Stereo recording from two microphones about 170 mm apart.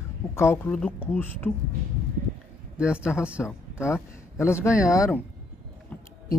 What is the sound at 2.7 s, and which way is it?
Speech, 5° right (ahead or behind).